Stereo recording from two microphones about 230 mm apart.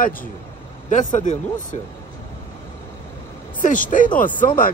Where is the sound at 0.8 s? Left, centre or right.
Left.